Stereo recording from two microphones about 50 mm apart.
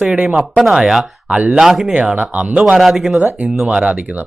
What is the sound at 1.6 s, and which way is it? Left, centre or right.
Speech, centre.